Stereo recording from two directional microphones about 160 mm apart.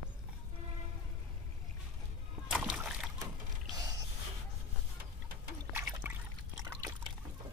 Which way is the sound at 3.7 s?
25° right (ahead or behind).